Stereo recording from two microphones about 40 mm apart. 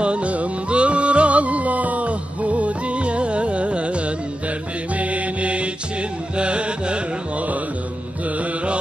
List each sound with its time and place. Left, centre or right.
0.0 s music: right
4.9 s mantra: right
6.3 s music: right